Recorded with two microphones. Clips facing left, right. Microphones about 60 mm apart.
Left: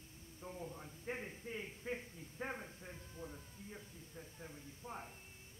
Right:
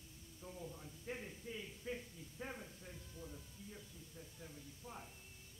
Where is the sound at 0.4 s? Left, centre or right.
Left.